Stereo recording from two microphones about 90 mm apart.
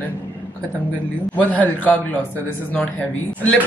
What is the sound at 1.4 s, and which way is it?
Speech, 20° left (ahead or behind).